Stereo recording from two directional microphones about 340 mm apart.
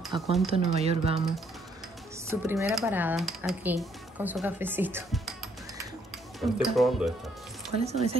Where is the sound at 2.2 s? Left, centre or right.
Centre.